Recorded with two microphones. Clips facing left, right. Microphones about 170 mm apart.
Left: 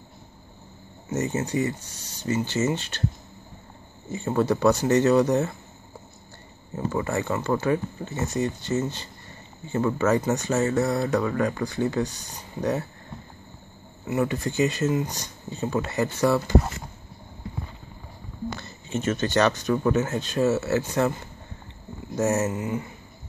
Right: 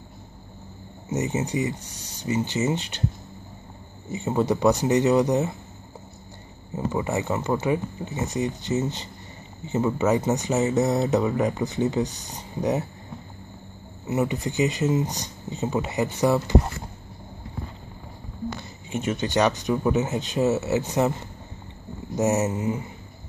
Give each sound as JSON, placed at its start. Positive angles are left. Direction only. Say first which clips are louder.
{"t": 1.1, "sound": "speech", "louder": "even", "side_deg": -20}
{"t": 4.1, "sound": "speech", "louder": "even", "side_deg": -15}
{"t": 6.9, "sound": "speech", "louder": "even", "side_deg": -15}
{"t": 14.0, "sound": "speech", "louder": "even", "side_deg": -20}
{"t": 18.6, "sound": "speech", "louder": "left 1 dB", "side_deg": -15}
{"t": 22.1, "sound": "speech", "louder": "right 1 dB", "side_deg": -20}